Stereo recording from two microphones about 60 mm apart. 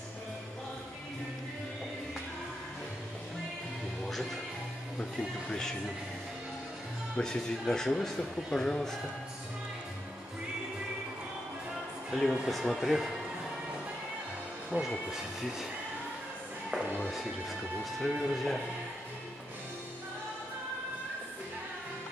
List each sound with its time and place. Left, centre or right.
4.0 s music: centre
5.5 s speech: centre
7.2 s speech: centre
12.1 s speech: centre
14.7 s speech: centre
18.0 s speech: centre